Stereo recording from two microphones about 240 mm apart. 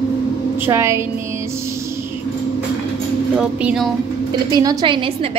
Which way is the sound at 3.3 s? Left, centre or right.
Centre.